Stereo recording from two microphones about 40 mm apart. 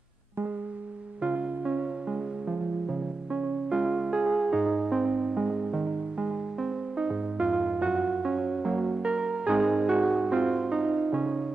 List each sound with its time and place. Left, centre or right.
1.2 s music: right
3.3 s music: centre
4.6 s music: centre
5.0 s music: right
7.0 s music: right
9.0 s music: right